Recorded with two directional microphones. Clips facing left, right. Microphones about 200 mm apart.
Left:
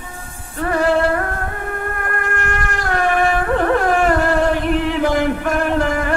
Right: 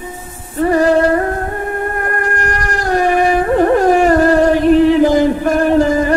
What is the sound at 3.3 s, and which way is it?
Carnatic music, 15° right (ahead or behind).